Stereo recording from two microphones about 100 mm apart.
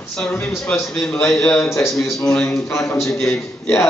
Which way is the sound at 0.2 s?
10° left (ahead or behind).